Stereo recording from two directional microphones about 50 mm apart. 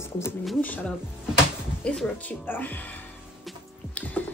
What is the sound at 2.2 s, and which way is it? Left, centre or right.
Speech, left.